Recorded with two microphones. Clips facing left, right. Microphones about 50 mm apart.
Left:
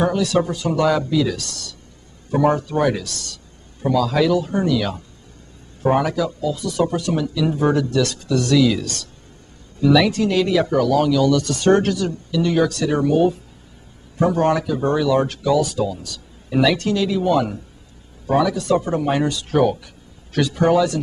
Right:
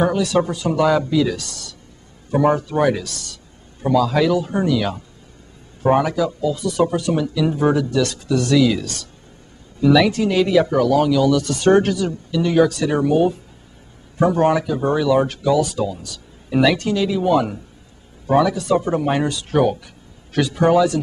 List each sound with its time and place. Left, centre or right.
0.0 s speech: centre